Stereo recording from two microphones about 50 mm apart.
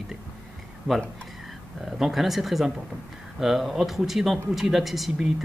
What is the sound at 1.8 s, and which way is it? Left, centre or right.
Speech, centre.